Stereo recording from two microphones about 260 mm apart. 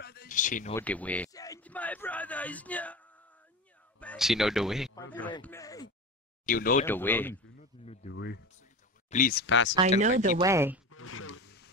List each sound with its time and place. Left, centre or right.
0.0 s a sound: left
0.7 s a sound: centre
4.0 s speech: centre
4.9 s speech: centre
6.4 s speech: left
6.9 s speech: centre
7.8 s speech: left
8.1 s speech: left
9.9 s speech: right
10.4 s speech: centre
10.9 s a sound: left